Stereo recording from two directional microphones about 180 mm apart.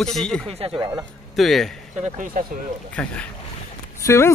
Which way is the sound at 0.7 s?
20° right (ahead or behind).